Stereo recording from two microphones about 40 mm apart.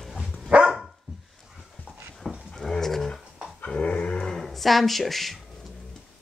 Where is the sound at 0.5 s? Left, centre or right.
Right.